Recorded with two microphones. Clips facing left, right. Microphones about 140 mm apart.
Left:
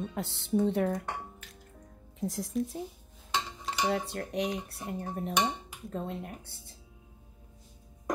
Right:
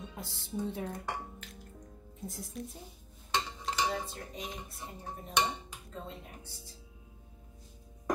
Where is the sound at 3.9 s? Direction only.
70° left (ahead or behind).